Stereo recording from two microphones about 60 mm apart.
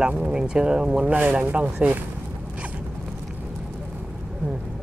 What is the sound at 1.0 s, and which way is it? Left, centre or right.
Speech, right.